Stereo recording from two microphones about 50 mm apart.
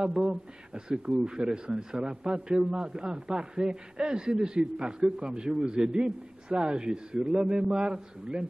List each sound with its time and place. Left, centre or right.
0.0 s a man's voice: centre